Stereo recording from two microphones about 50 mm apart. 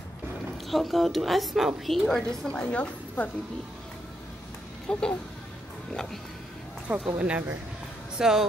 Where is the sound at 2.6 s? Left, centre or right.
Left.